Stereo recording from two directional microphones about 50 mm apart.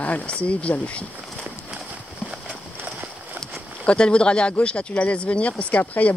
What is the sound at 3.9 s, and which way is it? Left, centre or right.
Speech, centre.